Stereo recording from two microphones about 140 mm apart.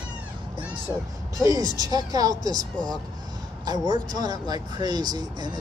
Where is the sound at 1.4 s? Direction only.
25° right (ahead or behind).